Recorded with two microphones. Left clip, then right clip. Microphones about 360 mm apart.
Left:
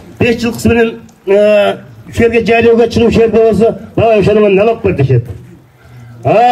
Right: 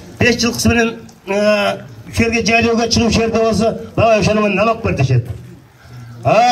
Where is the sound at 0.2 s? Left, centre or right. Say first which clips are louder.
Left 2 dB; centre.